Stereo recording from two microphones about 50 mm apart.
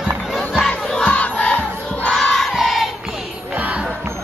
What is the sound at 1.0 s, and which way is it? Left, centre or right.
Crowd, left.